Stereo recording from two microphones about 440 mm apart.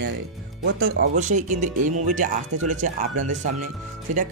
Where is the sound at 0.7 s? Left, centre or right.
Right.